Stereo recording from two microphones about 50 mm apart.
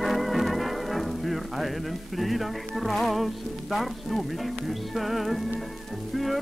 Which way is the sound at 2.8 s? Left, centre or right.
Centre.